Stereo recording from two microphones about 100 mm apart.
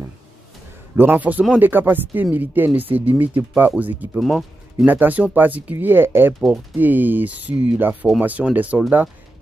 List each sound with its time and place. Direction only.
0.9 s speech: 15° right (ahead or behind)
4.2 s speech: centre (ahead or behind)
4.8 s speech: 15° right (ahead or behind)